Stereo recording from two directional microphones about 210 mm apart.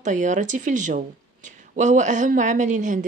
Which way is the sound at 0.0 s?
35° right (ahead or behind).